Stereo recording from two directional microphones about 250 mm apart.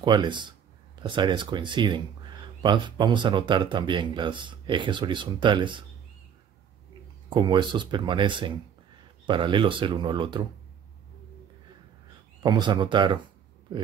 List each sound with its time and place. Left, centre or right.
0.0 s speech: centre
7.2 s speech: centre
12.4 s speech: centre